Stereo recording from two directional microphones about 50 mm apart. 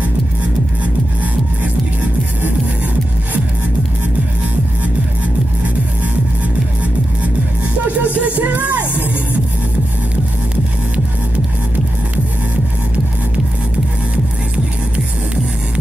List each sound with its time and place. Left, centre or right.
8.0 s music: right